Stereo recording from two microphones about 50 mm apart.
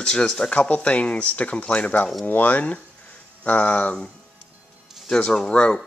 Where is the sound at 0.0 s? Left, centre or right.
Centre; by 3.9 s left.